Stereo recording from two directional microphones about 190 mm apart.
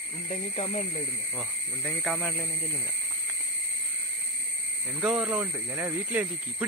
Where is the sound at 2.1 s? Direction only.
10° left (ahead or behind).